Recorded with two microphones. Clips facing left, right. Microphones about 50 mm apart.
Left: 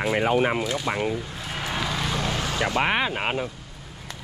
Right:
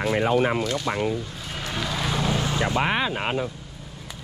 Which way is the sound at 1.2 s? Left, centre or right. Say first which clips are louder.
Left 2 dB; centre.